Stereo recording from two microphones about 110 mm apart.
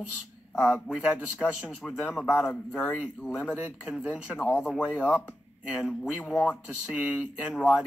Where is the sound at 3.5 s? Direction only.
15° right (ahead or behind).